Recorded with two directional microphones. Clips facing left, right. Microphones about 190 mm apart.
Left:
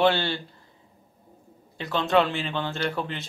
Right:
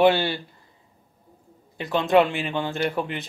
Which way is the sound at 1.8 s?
15° right (ahead or behind).